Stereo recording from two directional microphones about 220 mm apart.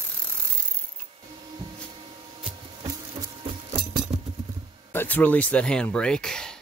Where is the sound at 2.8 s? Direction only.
20° right (ahead or behind).